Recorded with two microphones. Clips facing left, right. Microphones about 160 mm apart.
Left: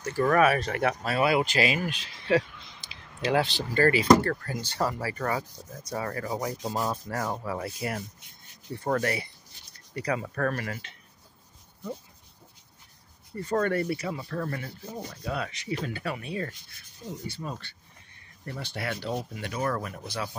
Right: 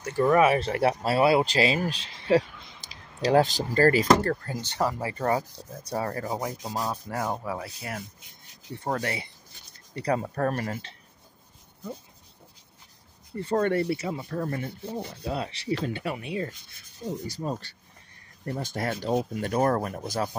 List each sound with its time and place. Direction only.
0.2 s speech: 20° right (ahead or behind); by 4.4 s 40° right (ahead or behind)
4.5 s rub: 20° right (ahead or behind)
6.7 s speech: centre (ahead or behind)
7.1 s rub: 20° right (ahead or behind)
7.5 s speech: centre (ahead or behind)
8.8 s rub: 20° right (ahead or behind)
9.9 s speech: 30° right (ahead or behind)
13.4 s rub: 25° right (ahead or behind)
17.1 s speech: 30° right (ahead or behind); by 20.2 s 45° right (ahead or behind)